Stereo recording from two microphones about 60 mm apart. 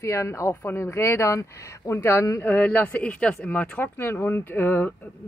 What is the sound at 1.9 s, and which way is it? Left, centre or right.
Speech, left.